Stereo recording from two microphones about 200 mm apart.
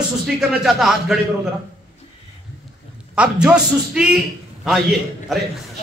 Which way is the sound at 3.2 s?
5° right (ahead or behind).